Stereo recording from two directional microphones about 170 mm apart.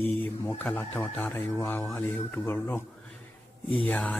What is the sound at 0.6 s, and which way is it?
Speech, 10° left (ahead or behind).